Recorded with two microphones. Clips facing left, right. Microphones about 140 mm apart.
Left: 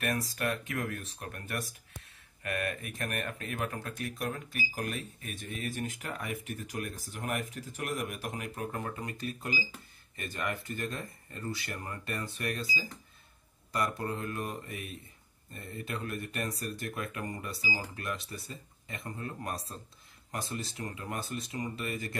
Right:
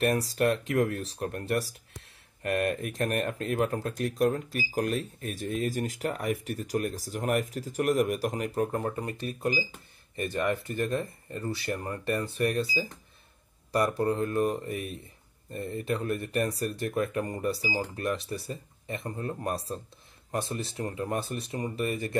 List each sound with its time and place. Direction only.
0.0 s speech: 30° right (ahead or behind)